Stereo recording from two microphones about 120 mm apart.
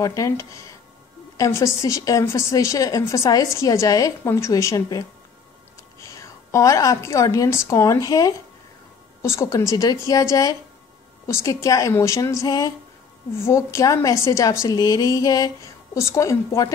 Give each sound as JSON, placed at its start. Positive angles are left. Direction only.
{"t": 0.0, "sound": "a woman's voice", "side_deg": 30}